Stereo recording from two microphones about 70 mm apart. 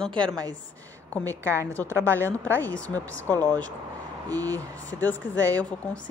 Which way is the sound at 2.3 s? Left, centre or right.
Left.